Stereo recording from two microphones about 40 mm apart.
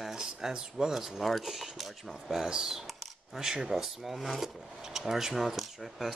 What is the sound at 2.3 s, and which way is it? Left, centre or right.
Speech, centre.